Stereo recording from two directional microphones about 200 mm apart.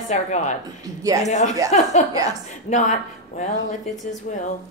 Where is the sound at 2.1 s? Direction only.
20° right (ahead or behind).